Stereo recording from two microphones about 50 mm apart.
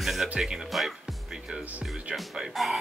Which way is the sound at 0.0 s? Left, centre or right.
Centre.